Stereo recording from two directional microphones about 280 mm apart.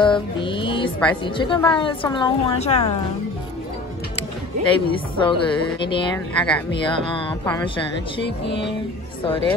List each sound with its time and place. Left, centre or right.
0.0 s music: centre
1.2 s a woman's voice: centre
4.6 s a woman's voice: centre
6.3 s speech: centre
6.7 s a woman's voice: centre
8.2 s music: left